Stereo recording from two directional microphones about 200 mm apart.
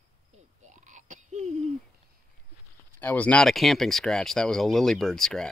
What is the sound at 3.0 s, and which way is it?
Speech, 5° left (ahead or behind).